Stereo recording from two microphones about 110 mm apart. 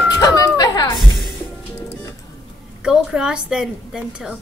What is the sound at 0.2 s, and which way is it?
Music, 35° left (ahead or behind).